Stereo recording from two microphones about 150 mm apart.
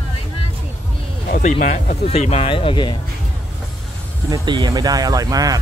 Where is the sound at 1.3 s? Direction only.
55° left (ahead or behind).